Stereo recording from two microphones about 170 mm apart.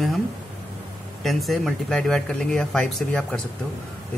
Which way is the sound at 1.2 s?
Centre (ahead or behind).